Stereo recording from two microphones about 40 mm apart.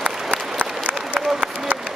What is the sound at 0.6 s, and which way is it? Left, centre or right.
Applause, right.